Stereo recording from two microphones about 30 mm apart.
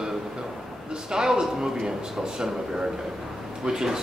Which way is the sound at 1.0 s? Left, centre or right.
Right.